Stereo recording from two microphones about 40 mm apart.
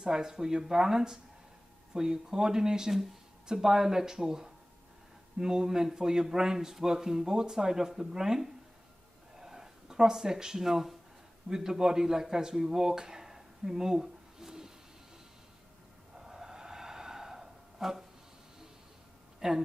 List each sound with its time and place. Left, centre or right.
0.0 s a man's voice: centre
9.4 s a sound: centre
11.4 s speech: centre
16.2 s snort: centre
19.4 s a man's voice: centre